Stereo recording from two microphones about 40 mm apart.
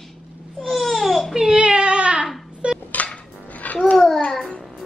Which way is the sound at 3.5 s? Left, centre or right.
Left.